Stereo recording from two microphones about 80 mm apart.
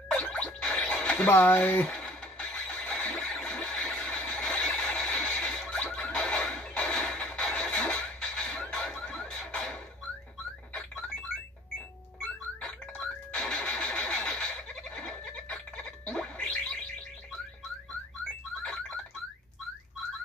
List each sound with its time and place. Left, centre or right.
0.1 s music: centre
1.2 s speech: left
1.9 s a sound: centre
13.0 s engine starting: centre
15.0 s music: centre